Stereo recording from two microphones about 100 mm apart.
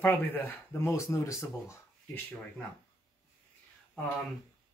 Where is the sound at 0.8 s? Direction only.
30° left (ahead or behind).